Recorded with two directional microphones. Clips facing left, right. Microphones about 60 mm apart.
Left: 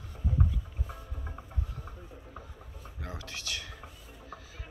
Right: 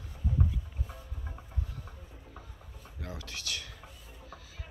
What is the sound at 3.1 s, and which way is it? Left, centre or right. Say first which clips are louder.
Typing: left 1 dB; centre.